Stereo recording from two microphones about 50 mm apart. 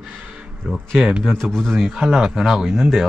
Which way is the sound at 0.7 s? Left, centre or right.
Centre.